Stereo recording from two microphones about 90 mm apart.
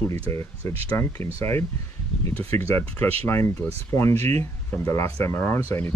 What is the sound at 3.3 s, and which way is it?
Speech, 30° left (ahead or behind).